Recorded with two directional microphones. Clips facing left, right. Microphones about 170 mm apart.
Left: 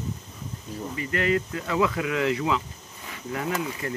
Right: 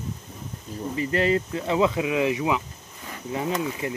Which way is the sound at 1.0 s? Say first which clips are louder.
Right 3 dB; 30° right (ahead or behind).